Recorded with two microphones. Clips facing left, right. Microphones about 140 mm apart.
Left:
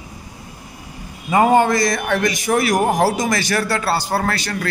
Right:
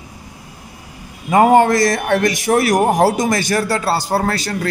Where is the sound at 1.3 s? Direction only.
60° right (ahead or behind).